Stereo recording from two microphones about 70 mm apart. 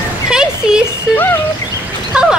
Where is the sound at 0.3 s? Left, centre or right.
Centre.